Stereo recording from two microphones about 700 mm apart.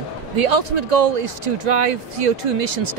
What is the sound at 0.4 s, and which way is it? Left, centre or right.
Speech, right.